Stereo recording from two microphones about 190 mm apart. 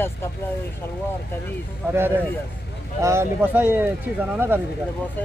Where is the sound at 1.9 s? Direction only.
10° right (ahead or behind).